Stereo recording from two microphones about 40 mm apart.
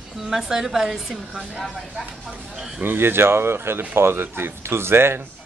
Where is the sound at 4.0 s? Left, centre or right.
Right.